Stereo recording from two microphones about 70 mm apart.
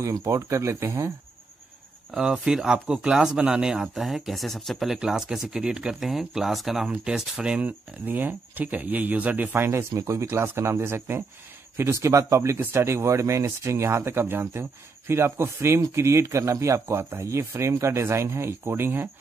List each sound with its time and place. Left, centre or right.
0.0 s speech: right
2.0 s speech: centre
8.0 s speech: right